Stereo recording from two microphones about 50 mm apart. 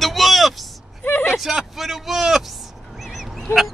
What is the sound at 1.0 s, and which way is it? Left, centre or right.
Speech, left.